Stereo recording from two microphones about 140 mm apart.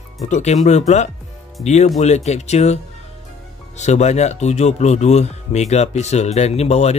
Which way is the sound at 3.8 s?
55° left (ahead or behind).